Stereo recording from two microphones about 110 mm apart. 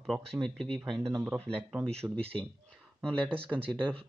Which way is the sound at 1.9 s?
70° right (ahead or behind).